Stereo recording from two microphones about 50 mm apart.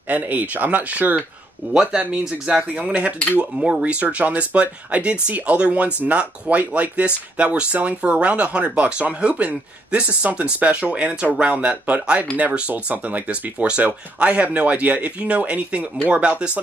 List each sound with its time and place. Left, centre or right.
0.1 s speech: right
1.7 s speech: centre